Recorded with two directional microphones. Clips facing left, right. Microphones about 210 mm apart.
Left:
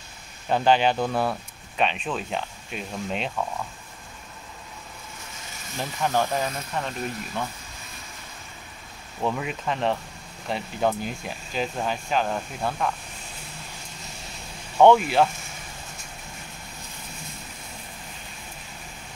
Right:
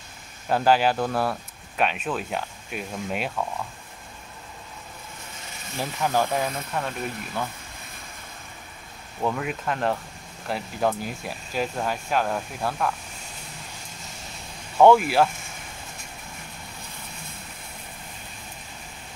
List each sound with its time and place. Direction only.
0.5 s speech: 5° right (ahead or behind)
5.8 s speech: 5° right (ahead or behind)
9.2 s speech: centre (ahead or behind)
14.8 s speech: 5° right (ahead or behind)